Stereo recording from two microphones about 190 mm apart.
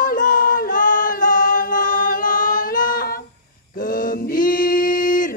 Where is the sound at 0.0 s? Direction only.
45° left (ahead or behind).